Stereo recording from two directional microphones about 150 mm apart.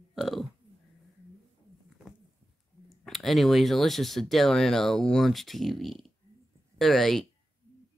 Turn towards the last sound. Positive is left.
turn(degrees=0)  # may be behind; listen again after turning